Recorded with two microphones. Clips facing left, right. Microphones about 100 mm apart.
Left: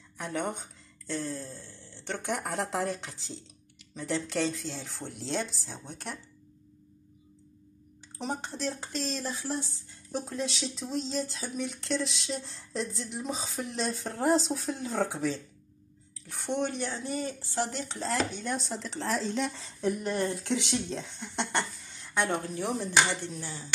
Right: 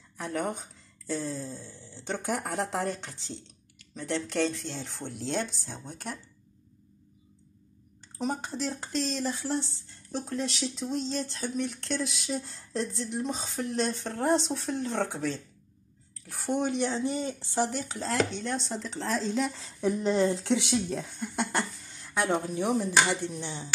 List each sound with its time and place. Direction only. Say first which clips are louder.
0.2 s speech: right 1 dB; centre (ahead or behind)
2.3 s speech: even; centre (ahead or behind)
8.2 s speech: right 3 dB; centre (ahead or behind)
19.8 s speech: right 4 dB; 25° right (ahead or behind); by 22.4 s 5° right (ahead or behind)
22.5 s speech: right 3 dB; 15° right (ahead or behind)